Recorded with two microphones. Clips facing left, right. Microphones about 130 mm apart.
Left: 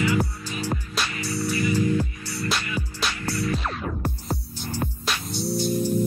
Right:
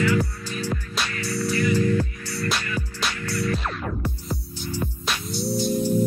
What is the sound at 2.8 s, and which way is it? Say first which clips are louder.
Music: even; 15° left (ahead or behind).